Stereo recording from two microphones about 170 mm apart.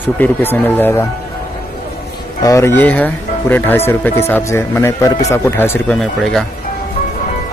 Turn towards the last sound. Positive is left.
turn(degrees=0)  # may be behind; listen again after turning